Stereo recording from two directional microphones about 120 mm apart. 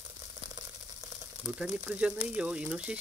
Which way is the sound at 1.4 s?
10° right (ahead or behind).